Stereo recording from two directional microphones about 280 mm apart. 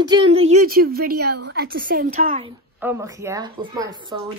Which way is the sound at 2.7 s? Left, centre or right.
Centre.